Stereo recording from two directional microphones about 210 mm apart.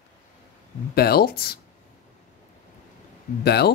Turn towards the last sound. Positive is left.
turn(degrees=50)  # may be behind; listen again after turning